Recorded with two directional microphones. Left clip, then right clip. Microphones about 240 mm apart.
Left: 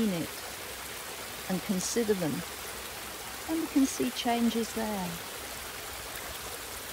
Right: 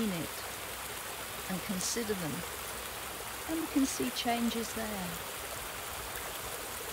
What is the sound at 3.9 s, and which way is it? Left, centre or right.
Speech, centre.